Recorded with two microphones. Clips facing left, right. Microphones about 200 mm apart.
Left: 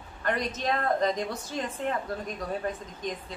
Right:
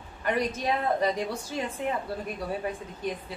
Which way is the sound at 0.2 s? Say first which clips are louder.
Right 2 dB; 10° right (ahead or behind).